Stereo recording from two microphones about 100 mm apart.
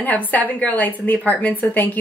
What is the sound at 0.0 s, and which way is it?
A woman's voice, 15° left (ahead or behind).